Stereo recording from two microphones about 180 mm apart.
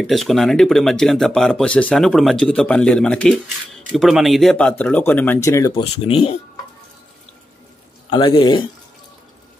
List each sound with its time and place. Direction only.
0.0 s speech: centre (ahead or behind); by 5.7 s 15° left (ahead or behind)
5.8 s speech: 30° left (ahead or behind)
8.1 s speech: 25° left (ahead or behind)